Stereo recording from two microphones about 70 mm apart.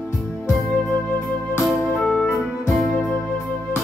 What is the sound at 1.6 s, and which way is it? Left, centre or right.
Music, centre.